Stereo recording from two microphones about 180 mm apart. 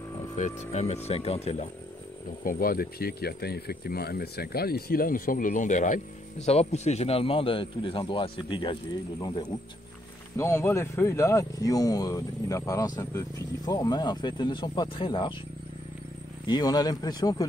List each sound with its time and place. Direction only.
0.4 s speech: 35° left (ahead or behind)
2.4 s speech: 55° left (ahead or behind); by 8.7 s 25° left (ahead or behind)
10.3 s speech: 15° left (ahead or behind)
16.4 s speech: 25° left (ahead or behind)